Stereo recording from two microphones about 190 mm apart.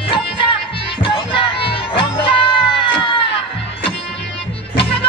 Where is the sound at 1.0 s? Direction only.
25° left (ahead or behind).